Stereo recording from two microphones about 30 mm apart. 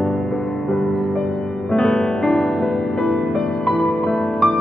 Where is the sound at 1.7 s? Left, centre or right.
Centre.